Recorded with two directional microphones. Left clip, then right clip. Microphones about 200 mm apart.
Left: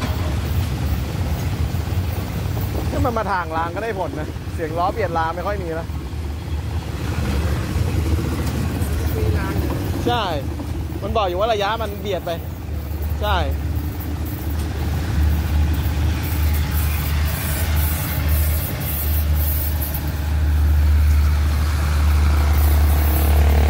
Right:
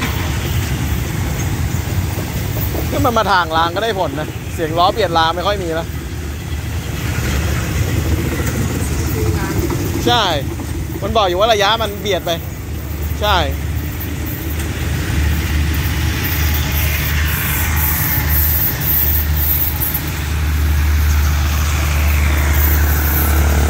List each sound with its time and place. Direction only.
3.0 s speech: 15° right (ahead or behind)
10.0 s speech: 10° right (ahead or behind)